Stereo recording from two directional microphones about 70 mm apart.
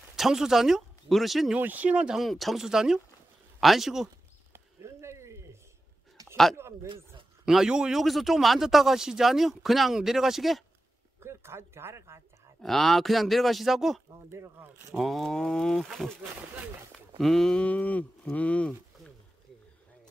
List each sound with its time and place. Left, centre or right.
0.1 s speech: centre
1.6 s speech: right
2.1 s speech: centre
4.5 s a sound: right
6.5 s speech: right
7.4 s speech: centre
11.1 s speech: right
12.6 s speech: centre
14.3 s speech: right
15.0 s speech: centre
17.2 s speech: centre